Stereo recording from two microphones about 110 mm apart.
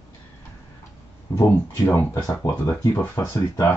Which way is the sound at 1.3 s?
20° left (ahead or behind).